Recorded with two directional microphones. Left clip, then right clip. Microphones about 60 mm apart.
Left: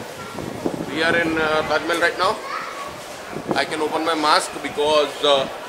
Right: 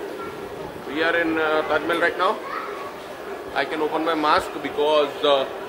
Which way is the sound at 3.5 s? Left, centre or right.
Centre.